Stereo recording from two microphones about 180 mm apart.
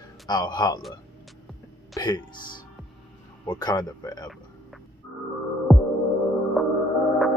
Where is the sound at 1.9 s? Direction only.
20° left (ahead or behind).